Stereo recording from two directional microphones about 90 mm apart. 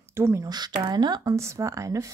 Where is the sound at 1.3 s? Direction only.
30° right (ahead or behind).